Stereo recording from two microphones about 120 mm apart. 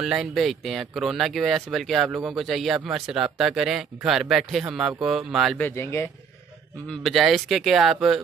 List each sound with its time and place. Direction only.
0.0 s speech: 5° right (ahead or behind)
5.6 s speech: 20° left (ahead or behind)
6.9 s speech: centre (ahead or behind)